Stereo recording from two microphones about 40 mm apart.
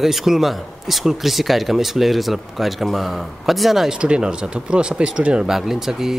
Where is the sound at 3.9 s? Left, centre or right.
Right.